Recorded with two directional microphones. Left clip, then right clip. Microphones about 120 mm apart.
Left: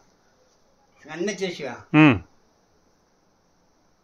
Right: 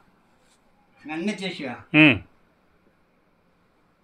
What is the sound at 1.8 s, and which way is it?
Speech, 90° left.